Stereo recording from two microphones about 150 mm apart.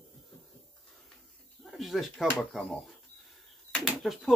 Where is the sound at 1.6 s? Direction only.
Centre (ahead or behind).